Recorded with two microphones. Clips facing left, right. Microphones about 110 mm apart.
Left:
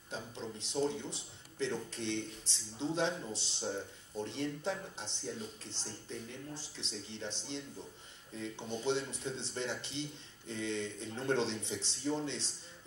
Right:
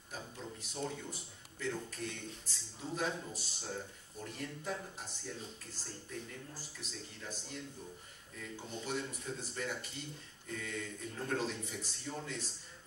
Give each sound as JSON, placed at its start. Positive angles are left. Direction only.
{"t": 0.1, "sound": "a man's voice", "side_deg": 25}